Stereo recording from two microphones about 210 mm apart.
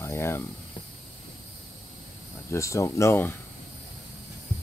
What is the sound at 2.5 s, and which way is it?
Speech, 15° left (ahead or behind).